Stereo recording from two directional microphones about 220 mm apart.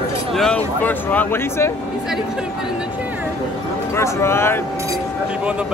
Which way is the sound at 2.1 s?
Centre (ahead or behind).